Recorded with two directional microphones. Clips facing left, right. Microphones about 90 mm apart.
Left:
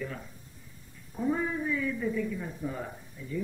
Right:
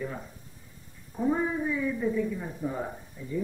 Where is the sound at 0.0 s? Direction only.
20° right (ahead or behind).